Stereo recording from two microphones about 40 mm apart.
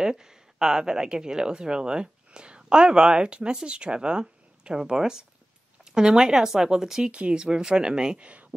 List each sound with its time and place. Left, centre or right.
0.0 s speech: centre
7.1 s speech: right
8.3 s a sound: right